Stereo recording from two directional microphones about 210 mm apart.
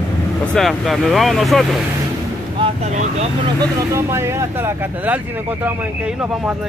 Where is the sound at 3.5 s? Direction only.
15° right (ahead or behind).